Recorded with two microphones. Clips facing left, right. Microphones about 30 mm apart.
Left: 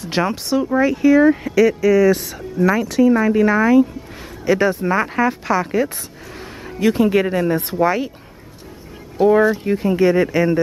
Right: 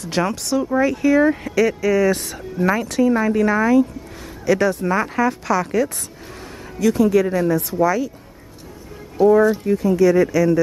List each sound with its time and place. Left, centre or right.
0.0 s speech: left
0.7 s speech: centre
4.5 s speech: left
6.8 s speech: left
9.2 s speech: left